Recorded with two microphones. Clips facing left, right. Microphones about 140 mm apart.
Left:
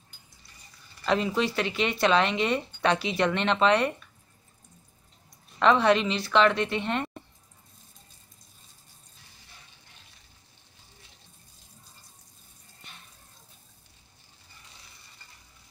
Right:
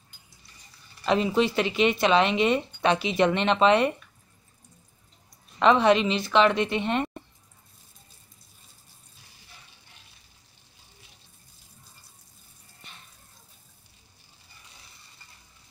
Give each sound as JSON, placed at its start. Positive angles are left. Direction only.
{"t": 1.0, "sound": "speech", "side_deg": -15}
{"t": 5.6, "sound": "speech", "side_deg": -20}